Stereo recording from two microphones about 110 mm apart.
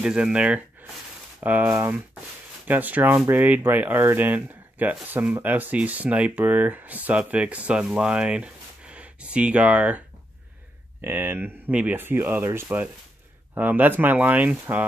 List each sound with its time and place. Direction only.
0.0 s speech: 10° right (ahead or behind)